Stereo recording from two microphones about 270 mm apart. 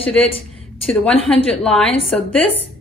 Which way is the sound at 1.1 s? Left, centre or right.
Left.